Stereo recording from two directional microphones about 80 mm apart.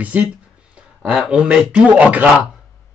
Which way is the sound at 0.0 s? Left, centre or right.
Centre.